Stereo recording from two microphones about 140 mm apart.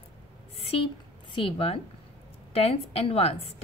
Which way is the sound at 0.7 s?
40° left (ahead or behind).